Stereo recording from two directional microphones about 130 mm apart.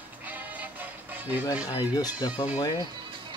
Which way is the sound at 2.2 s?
35° left (ahead or behind).